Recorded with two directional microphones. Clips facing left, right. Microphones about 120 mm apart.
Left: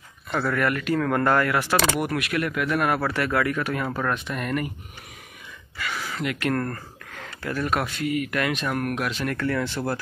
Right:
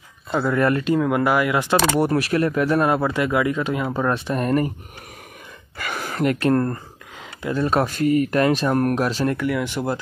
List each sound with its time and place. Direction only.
0.3 s speech: 15° right (ahead or behind)
0.9 s speech: 15° right (ahead or behind)
2.0 s speech: 35° right (ahead or behind)
4.1 s speech: 35° right (ahead or behind)
5.8 s gasp: 50° right (ahead or behind)
6.4 s speech: 25° right (ahead or behind)
9.4 s speech: 15° right (ahead or behind)